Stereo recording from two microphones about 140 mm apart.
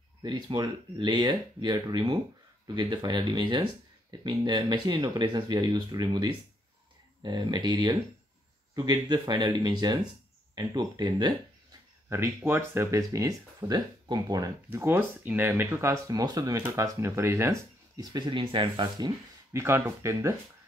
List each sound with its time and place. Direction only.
0.2 s speech: 30° right (ahead or behind)
12.1 s speech: 20° right (ahead or behind); by 19.1 s 35° right (ahead or behind)
19.5 s speech: 20° right (ahead or behind)